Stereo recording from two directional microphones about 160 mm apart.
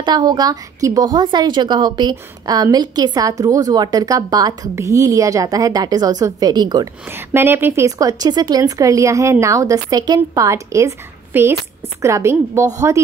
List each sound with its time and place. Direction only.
0.0 s a woman's voice: 25° right (ahead or behind)
7.1 s a woman's voice: 15° right (ahead or behind)